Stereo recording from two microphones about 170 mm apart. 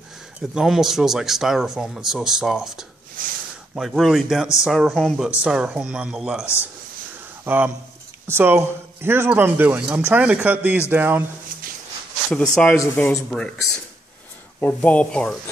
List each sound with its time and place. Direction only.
0.4 s speech: 5° right (ahead or behind)
3.2 s a sound: 55° right (ahead or behind)
3.7 s speech: centre (ahead or behind)
6.4 s speech: 15° left (ahead or behind)
7.4 s speech: 10° right (ahead or behind)
12.3 s speech: 5° left (ahead or behind)